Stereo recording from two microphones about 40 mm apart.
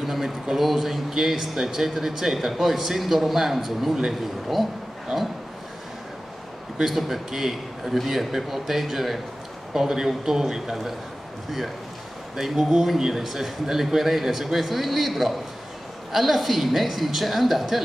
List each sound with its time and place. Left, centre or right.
0.0 s speech: centre
6.8 s a man's voice: centre
12.4 s speech: centre